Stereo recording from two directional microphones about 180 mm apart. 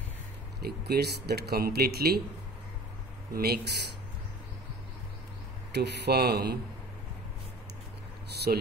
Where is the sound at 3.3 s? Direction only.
60° right (ahead or behind).